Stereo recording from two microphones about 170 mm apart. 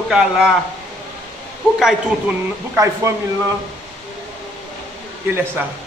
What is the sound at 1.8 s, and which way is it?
Speech, centre (ahead or behind).